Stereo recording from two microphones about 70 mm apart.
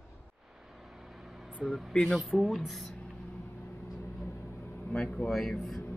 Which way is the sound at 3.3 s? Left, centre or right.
Left.